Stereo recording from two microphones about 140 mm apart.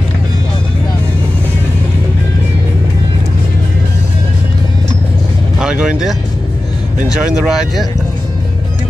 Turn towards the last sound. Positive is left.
turn(degrees=0)  # may be behind; listen again after turning